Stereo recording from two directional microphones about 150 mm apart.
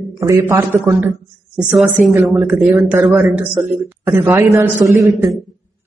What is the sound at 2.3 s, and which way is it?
A man's voice, 10° right (ahead or behind).